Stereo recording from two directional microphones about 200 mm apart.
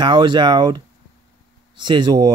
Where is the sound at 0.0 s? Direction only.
20° right (ahead or behind).